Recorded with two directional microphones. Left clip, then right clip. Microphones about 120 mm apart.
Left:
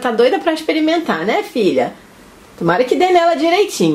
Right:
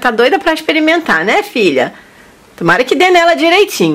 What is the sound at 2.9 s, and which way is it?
Speech, 35° right (ahead or behind).